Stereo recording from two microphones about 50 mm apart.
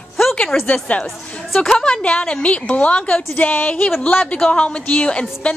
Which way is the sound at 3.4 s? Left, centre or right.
Left.